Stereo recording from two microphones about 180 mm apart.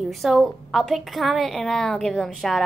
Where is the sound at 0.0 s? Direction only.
Centre (ahead or behind).